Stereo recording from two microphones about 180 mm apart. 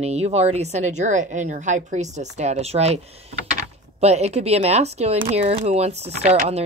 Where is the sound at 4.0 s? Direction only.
35° right (ahead or behind).